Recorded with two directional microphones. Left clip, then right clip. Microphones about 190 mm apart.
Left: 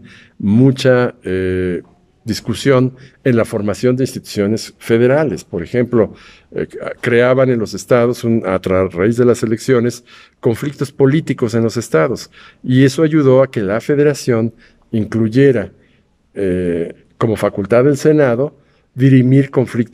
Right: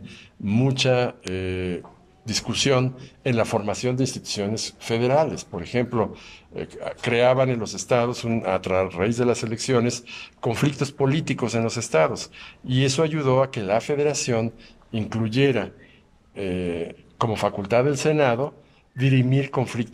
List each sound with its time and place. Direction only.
0.0 s speech: 45° left (ahead or behind)